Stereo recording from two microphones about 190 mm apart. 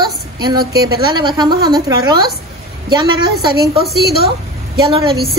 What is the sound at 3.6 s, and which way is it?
Speech, 55° right (ahead or behind).